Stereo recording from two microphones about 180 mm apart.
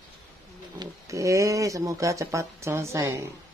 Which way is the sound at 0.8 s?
20° right (ahead or behind).